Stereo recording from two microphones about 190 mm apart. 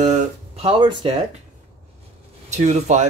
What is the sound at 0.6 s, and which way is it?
Speech, 30° right (ahead or behind).